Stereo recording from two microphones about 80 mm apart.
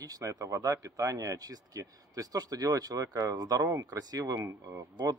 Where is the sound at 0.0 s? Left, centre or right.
Right.